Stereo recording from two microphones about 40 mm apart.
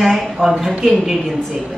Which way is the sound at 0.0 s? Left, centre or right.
Centre.